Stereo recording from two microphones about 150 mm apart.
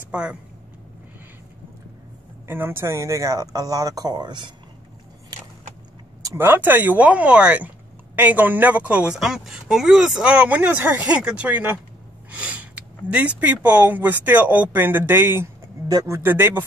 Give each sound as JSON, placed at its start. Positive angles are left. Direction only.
{"t": 0.1, "sound": "speech", "side_deg": -5}
{"t": 2.4, "sound": "speech", "side_deg": -15}
{"t": 6.2, "sound": "speech", "side_deg": -15}